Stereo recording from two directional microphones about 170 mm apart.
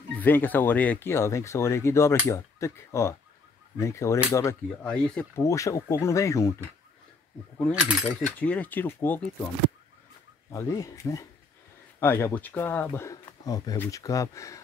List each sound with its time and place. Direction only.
0.2 s speech: 10° left (ahead or behind)
7.7 s speech: 5° right (ahead or behind)
8.4 s speech: 10° left (ahead or behind)
10.5 s speech: 20° left (ahead or behind)